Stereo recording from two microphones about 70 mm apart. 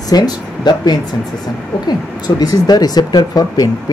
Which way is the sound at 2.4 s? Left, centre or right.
Left.